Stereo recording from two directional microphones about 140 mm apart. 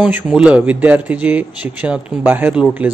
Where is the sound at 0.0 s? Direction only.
10° right (ahead or behind).